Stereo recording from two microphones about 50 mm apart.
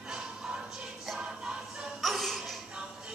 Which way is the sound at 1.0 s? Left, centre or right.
Centre.